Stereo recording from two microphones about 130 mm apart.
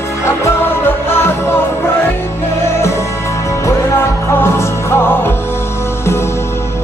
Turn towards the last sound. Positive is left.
turn(degrees=15)  # may be behind; listen again after turning